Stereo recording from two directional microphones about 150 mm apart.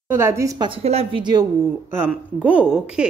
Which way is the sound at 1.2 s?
30° right (ahead or behind).